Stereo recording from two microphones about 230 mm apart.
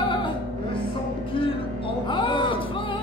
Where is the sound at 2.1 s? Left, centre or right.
Centre.